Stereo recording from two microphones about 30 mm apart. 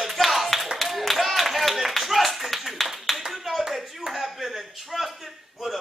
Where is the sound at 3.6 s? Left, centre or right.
Centre.